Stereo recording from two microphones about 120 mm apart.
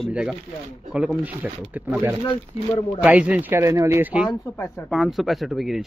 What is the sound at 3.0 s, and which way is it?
Speech, 10° right (ahead or behind).